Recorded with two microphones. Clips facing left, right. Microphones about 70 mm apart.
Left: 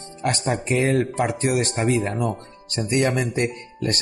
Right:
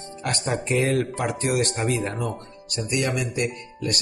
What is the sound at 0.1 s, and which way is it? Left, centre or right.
Speech, left.